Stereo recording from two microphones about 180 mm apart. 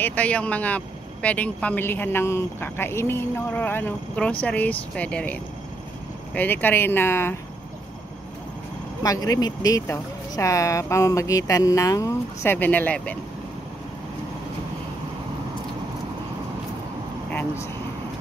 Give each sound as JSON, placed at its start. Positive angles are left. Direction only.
{"t": 0.0, "sound": "speech", "side_deg": 10}
{"t": 9.0, "sound": "speech", "side_deg": 20}
{"t": 17.3, "sound": "vehicle", "side_deg": 10}